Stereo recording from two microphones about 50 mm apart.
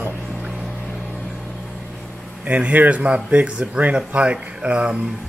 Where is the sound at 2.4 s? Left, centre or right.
Right.